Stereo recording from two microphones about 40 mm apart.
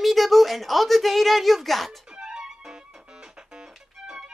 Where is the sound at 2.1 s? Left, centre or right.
Centre.